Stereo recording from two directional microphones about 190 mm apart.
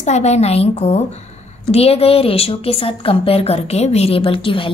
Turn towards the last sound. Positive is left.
turn(degrees=25)  # may be behind; listen again after turning